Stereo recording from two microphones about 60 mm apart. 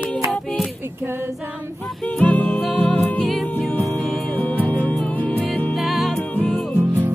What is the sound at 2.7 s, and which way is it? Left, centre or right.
Music, centre.